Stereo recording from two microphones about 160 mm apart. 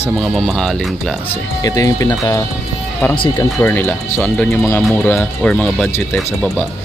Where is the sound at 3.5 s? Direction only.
10° left (ahead or behind).